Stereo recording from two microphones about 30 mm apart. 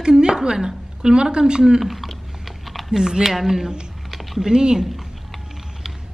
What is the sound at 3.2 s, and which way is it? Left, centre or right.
Speech, centre.